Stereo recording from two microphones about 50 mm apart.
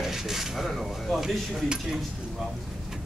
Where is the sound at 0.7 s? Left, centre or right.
Centre.